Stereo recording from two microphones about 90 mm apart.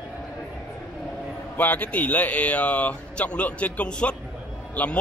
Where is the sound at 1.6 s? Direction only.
20° left (ahead or behind).